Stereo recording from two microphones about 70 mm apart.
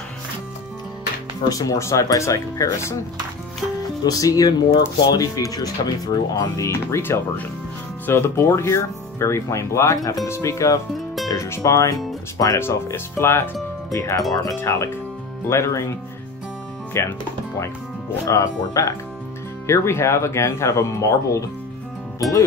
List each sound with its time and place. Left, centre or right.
1.5 s speech: left
4.0 s speech: left
13.9 s speech: left
14.5 s speech: left
18.2 s speech: left